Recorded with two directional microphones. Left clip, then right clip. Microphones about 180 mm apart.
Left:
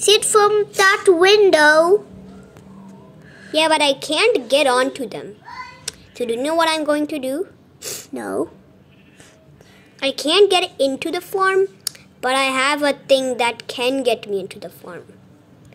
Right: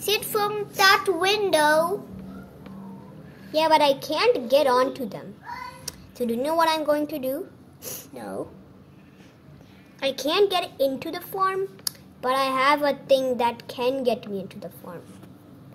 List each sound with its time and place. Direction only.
0.0 s a child's voice: 35° left (ahead or behind)
3.5 s a woman's voice: 10° left (ahead or behind)
8.1 s speech: 45° left (ahead or behind)
9.9 s a woman's voice: centre (ahead or behind)